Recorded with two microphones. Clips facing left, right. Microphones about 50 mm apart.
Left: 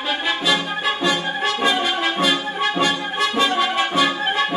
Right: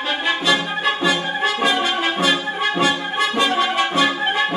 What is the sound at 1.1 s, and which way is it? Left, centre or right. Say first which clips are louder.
Brass instrument: right 1 dB; centre.